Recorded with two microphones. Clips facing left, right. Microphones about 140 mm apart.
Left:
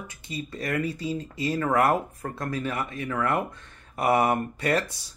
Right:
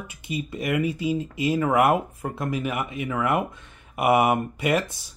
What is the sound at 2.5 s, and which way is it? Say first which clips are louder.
Speech: right 1 dB; 15° right (ahead or behind).